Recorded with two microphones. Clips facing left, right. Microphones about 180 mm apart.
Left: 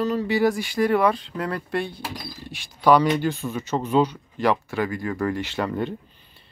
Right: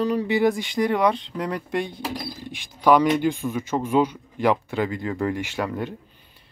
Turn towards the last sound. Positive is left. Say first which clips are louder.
# left 2 dB
turn(degrees=-5)  # may be behind; listen again after turning